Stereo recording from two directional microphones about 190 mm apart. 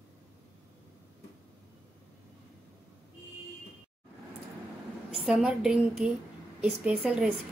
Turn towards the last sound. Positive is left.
turn(degrees=-5)  # may be behind; listen again after turning